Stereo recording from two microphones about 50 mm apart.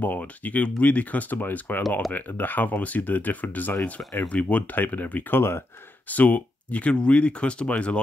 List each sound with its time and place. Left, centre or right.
0.0 s speech: left
1.9 s speech: centre
2.1 s speech: left